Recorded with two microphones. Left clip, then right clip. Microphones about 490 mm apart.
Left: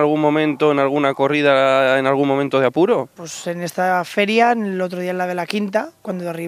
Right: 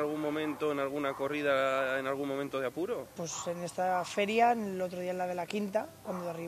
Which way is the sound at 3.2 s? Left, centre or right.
Left.